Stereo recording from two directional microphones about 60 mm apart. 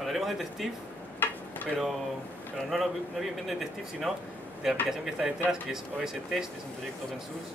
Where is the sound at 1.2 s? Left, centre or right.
Left.